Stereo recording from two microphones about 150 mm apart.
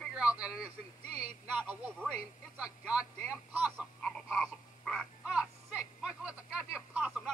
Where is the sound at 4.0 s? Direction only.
5° left (ahead or behind).